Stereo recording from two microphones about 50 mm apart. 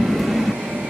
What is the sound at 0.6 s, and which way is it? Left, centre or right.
Train, right.